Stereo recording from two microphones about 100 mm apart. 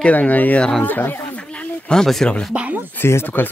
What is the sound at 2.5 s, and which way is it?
Speech, 15° right (ahead or behind).